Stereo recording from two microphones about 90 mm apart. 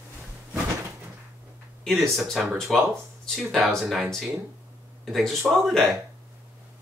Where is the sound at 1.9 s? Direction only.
Centre (ahead or behind).